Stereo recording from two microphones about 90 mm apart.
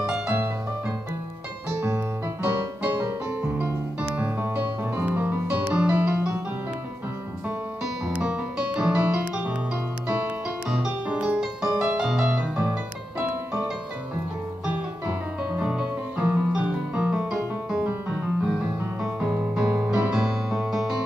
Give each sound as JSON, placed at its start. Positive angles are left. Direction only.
{"t": 0.0, "sound": "music", "side_deg": -15}
{"t": 3.0, "sound": "piano", "side_deg": -30}
{"t": 4.1, "sound": "music", "side_deg": -20}
{"t": 7.8, "sound": "music", "side_deg": -10}
{"t": 15.5, "sound": "piano", "side_deg": -10}
{"t": 19.1, "sound": "music", "side_deg": -10}